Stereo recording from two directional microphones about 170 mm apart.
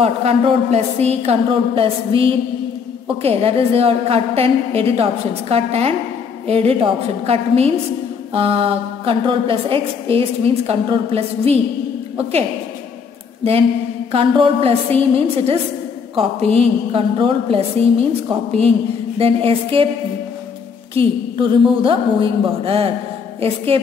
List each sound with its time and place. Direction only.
0.0 s a woman's voice: 40° right (ahead or behind)
19.1 s a woman's voice: 35° right (ahead or behind)
20.9 s a woman's voice: 30° right (ahead or behind)